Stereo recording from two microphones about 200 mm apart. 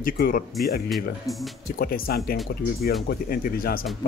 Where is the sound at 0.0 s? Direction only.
45° left (ahead or behind).